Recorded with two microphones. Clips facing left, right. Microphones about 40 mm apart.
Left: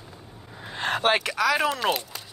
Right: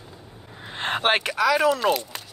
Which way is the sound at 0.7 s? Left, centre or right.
Right.